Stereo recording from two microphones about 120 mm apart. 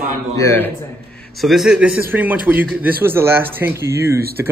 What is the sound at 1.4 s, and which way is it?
A man's voice, centre (ahead or behind).